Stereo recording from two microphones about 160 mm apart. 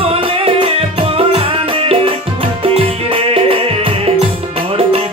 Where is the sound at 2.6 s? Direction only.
35° right (ahead or behind).